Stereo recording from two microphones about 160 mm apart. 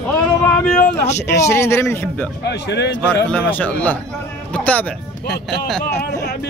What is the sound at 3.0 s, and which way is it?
Speech, 10° left (ahead or behind).